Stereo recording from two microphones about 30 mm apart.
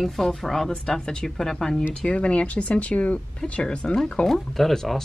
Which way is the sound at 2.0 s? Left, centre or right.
Left.